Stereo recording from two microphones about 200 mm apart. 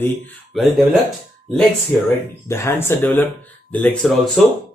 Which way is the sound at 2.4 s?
15° left (ahead or behind).